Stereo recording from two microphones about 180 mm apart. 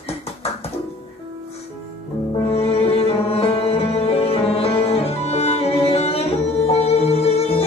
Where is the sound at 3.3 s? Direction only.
35° left (ahead or behind).